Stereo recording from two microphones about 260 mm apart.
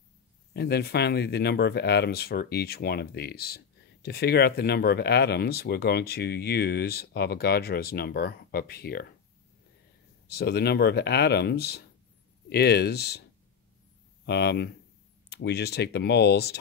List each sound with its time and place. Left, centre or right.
0.5 s speech: left
10.2 s speech: left
14.2 s speech: left